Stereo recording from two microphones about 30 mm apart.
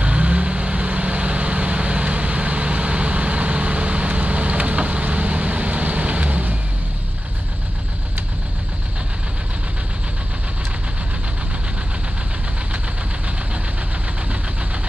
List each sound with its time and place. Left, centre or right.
0.0 s vehicle: right